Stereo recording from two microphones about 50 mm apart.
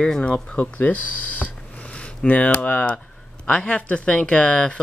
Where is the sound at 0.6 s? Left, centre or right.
Left; by 4.7 s centre.